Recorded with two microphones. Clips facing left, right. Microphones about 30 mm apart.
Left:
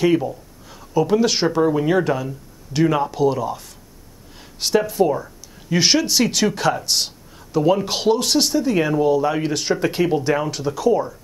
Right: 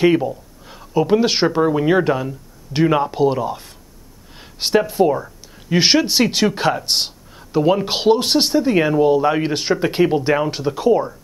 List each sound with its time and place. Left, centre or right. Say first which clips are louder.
0.0 s speech: right 2 dB; centre